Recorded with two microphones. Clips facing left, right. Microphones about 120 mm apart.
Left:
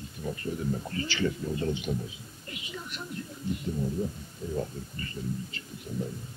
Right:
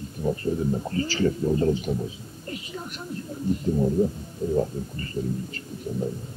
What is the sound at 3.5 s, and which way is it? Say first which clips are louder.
A man's voice: right 9 dB; 35° right (ahead or behind).